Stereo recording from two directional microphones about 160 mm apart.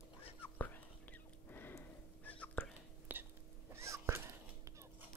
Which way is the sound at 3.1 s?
10° right (ahead or behind).